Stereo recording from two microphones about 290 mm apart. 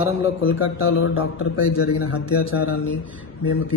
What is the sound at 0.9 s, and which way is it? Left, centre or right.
A man's voice, left.